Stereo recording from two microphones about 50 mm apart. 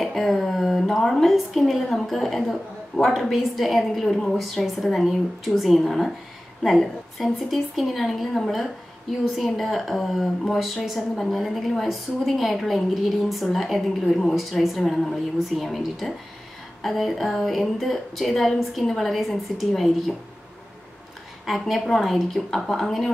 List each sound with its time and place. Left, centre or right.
0.0 s a woman's voice: centre
21.5 s a woman's voice: centre